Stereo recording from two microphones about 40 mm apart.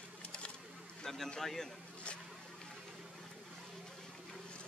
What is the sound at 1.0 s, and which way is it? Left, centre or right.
Speech, centre.